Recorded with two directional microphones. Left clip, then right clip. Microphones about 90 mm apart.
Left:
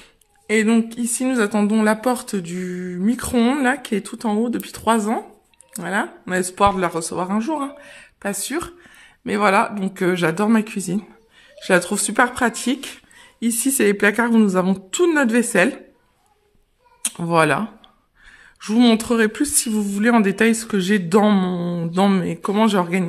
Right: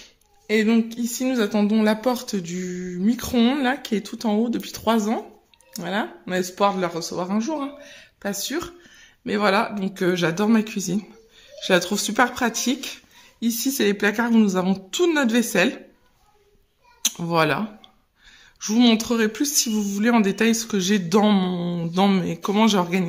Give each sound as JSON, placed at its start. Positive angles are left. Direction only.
{"t": 0.5, "sound": "speech", "side_deg": 30}
{"t": 7.2, "sound": "a woman's voice", "side_deg": 30}
{"t": 17.0, "sound": "a sound", "side_deg": 30}
{"t": 19.3, "sound": "speech", "side_deg": 30}
{"t": 22.2, "sound": "speech", "side_deg": 25}
{"t": 22.5, "sound": "speech", "side_deg": 10}